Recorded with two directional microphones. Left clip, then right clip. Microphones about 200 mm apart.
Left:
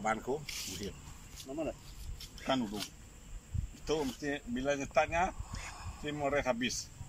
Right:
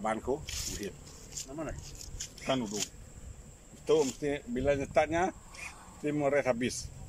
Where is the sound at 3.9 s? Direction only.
15° right (ahead or behind).